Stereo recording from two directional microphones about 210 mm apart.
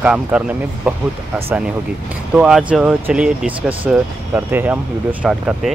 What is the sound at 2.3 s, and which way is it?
Speech, 5° right (ahead or behind).